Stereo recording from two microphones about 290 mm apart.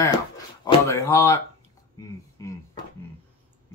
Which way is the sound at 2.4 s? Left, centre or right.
Centre.